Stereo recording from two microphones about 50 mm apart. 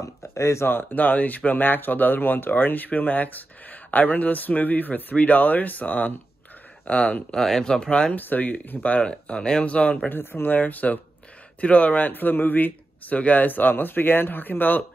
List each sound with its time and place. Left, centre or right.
0.0 s speech: left
0.7 s speech: left
7.3 s speech: centre
8.1 s speech: left
9.0 s speech: centre
9.8 s speech: left
10.0 s speech: left